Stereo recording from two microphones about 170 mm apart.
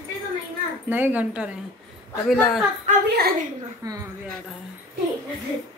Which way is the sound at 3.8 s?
20° right (ahead or behind).